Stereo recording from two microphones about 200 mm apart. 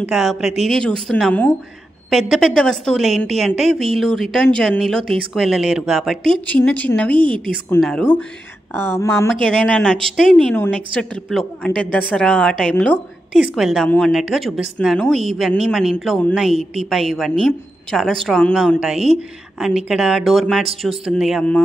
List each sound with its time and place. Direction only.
0.0 s a woman's voice: centre (ahead or behind)
7.2 s a woman's voice: 25° right (ahead or behind)
7.4 s a woman's voice: 5° left (ahead or behind)